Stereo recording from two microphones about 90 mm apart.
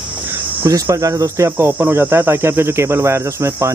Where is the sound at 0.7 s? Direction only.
40° right (ahead or behind).